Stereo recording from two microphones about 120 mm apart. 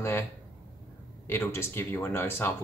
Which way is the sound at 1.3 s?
20° left (ahead or behind).